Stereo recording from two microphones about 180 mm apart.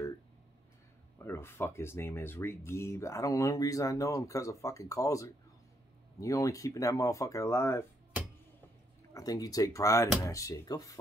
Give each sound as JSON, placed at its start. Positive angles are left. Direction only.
{"t": 1.2, "sound": "speech", "side_deg": 15}
{"t": 9.1, "sound": "speech", "side_deg": 20}